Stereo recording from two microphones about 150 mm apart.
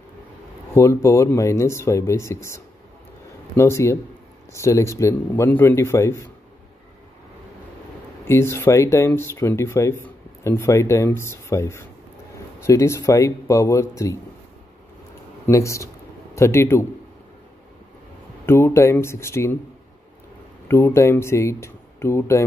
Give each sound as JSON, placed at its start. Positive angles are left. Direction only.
{"t": 0.7, "sound": "speech", "side_deg": 20}
{"t": 8.3, "sound": "speech", "side_deg": 15}
{"t": 15.4, "sound": "speech", "side_deg": 20}
{"t": 18.4, "sound": "speech", "side_deg": 15}
{"t": 20.6, "sound": "speech", "side_deg": 20}